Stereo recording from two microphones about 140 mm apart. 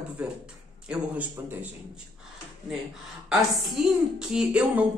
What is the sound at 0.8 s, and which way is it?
Speech, 10° right (ahead or behind).